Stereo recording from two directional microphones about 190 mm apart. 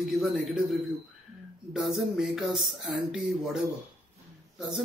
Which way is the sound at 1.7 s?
5° right (ahead or behind).